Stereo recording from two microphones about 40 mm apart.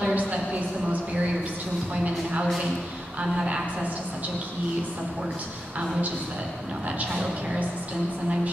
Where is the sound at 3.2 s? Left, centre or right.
Right.